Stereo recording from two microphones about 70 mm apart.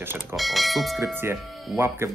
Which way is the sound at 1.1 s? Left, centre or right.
Right.